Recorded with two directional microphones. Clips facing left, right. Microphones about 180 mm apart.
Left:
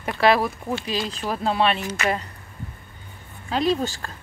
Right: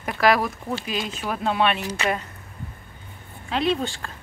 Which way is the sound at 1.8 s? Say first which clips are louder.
Left 1 dB; 30° right (ahead or behind).